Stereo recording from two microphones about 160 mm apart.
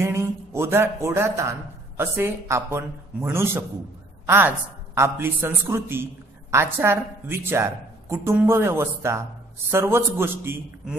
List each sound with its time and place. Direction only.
0.0 s a woman's voice: 15° right (ahead or behind)